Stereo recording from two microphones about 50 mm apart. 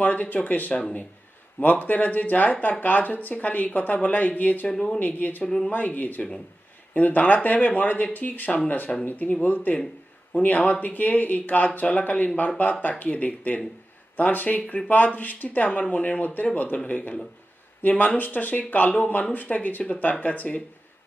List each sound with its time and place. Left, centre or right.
0.0 s a woman's voice: left
5.4 s speech: centre
5.7 s a woman's voice: left